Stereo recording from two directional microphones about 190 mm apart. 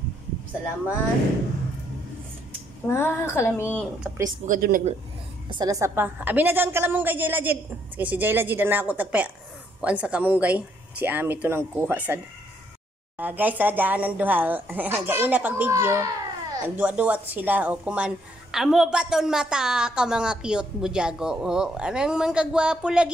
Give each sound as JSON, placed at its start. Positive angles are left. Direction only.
{"t": 2.9, "sound": "a woman's voice", "side_deg": 10}
{"t": 4.5, "sound": "a woman's voice", "side_deg": -50}
{"t": 5.5, "sound": "speech", "side_deg": -20}
{"t": 13.2, "sound": "a woman's voice", "side_deg": -10}